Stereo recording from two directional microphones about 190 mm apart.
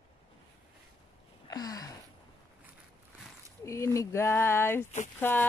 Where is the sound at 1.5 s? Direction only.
20° left (ahead or behind).